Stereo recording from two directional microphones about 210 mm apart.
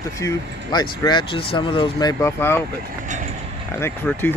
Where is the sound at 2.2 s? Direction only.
10° left (ahead or behind).